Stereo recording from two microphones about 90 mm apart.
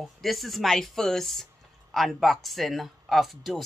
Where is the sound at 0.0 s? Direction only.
Centre (ahead or behind).